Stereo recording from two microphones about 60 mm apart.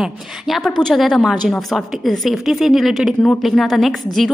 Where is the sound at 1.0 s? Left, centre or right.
Centre.